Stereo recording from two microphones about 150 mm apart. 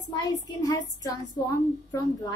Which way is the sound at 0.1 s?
25° left (ahead or behind).